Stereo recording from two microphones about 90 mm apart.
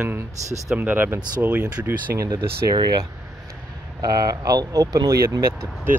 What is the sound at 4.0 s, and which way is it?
Speech, 45° right (ahead or behind).